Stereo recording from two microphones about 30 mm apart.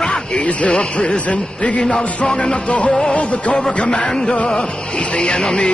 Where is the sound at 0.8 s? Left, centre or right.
Left.